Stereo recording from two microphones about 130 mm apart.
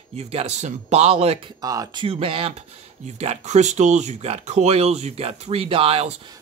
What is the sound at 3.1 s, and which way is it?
Speech, 55° right (ahead or behind).